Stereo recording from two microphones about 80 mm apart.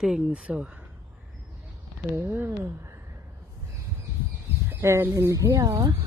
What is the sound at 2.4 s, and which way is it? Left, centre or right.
Speech, right.